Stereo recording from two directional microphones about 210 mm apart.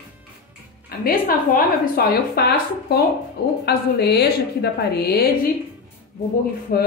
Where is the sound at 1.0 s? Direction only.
45° left (ahead or behind).